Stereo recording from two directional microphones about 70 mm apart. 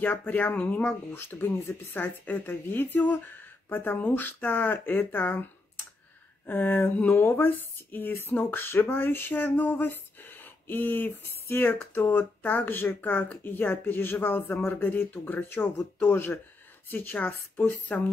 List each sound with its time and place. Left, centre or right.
0.0 s speech: left
6.4 s speech: left
16.9 s speech: left